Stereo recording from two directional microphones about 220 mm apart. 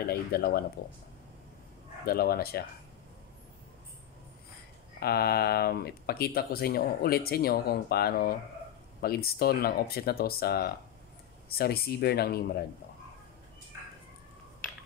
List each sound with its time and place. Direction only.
0.1 s speech: 45° left (ahead or behind)
2.0 s speech: 45° left (ahead or behind)
5.0 s speech: 45° left (ahead or behind)